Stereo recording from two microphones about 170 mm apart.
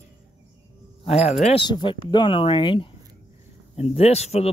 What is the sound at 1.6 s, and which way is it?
Speech, 25° left (ahead or behind).